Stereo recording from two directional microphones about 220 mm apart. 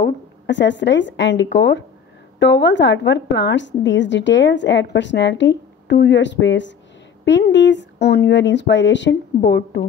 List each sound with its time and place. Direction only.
0.0 s a woman's voice: 55° left (ahead or behind)